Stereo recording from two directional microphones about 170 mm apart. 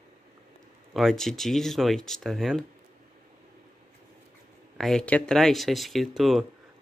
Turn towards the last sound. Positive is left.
turn(degrees=0)  # may be behind; listen again after turning